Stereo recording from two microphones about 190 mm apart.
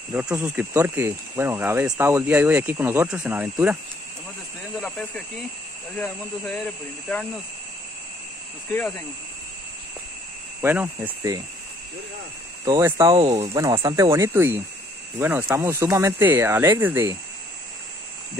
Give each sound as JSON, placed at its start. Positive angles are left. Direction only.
{"t": 0.1, "sound": "speech", "side_deg": -10}
{"t": 4.7, "sound": "speech", "side_deg": 5}
{"t": 10.6, "sound": "speech", "side_deg": -10}
{"t": 12.6, "sound": "speech", "side_deg": -20}
{"t": 13.8, "sound": "speech", "side_deg": -20}